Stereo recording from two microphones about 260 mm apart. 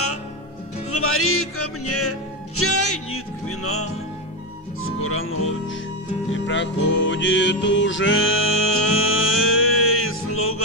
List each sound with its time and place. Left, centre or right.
0.9 s music: left